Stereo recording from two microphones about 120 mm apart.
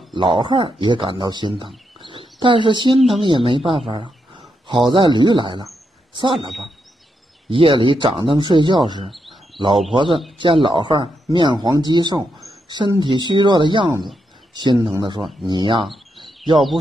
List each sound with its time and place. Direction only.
0.1 s speech: 45° right (ahead or behind)
2.0 s bird: 45° right (ahead or behind)
3.1 s speech: 45° right (ahead or behind)
7.4 s speech: 45° right (ahead or behind)
9.1 s bird: centre (ahead or behind)
9.9 s speech: 45° right (ahead or behind)